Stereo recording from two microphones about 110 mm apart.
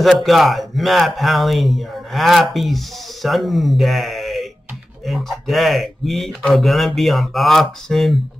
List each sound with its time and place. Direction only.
0.0 s speech: centre (ahead or behind)